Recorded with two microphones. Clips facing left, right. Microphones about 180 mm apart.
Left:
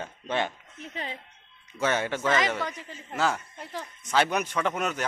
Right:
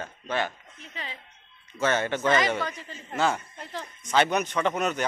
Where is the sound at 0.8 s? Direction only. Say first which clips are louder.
Left 4 dB; 50° left (ahead or behind).